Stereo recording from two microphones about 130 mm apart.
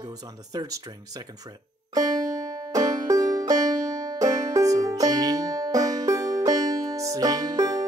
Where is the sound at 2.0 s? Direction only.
25° right (ahead or behind).